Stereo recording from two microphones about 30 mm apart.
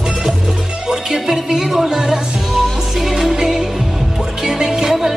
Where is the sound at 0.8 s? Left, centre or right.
Centre.